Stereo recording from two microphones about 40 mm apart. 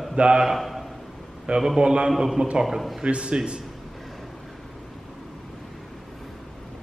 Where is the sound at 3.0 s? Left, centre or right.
Right.